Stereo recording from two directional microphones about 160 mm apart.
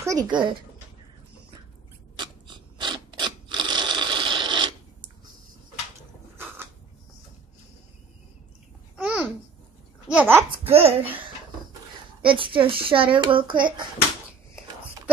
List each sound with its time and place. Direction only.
0.0 s speech: 20° right (ahead or behind)
2.1 s mechanisms: 30° right (ahead or behind)
6.3 s a sound: 15° right (ahead or behind)
8.9 s babbling: 5° right (ahead or behind)
10.7 s speech: 40° right (ahead or behind)
12.2 s speech: 30° right (ahead or behind)